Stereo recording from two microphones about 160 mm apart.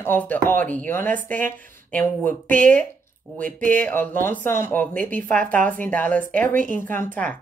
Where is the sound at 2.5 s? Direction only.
55° right (ahead or behind).